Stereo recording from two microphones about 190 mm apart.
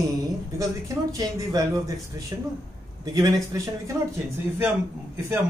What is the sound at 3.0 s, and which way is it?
Speech, 20° right (ahead or behind).